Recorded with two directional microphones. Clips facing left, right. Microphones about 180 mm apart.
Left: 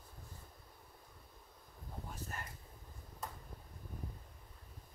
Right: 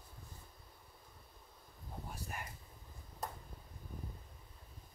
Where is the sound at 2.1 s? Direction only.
10° right (ahead or behind).